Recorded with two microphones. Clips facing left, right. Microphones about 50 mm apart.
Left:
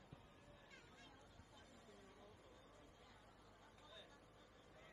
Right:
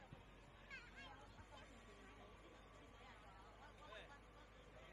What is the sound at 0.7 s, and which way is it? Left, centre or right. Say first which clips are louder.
Chatter: right 10 dB; right.